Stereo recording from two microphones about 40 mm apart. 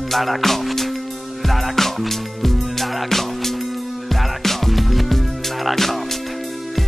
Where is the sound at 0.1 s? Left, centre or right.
Centre.